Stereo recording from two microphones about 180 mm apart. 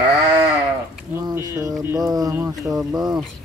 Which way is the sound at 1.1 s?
15° right (ahead or behind).